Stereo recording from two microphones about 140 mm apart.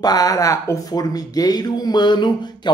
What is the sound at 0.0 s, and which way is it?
Speech, 25° left (ahead or behind).